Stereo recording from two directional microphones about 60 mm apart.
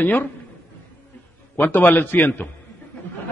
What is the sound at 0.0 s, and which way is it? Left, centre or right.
Speech, left.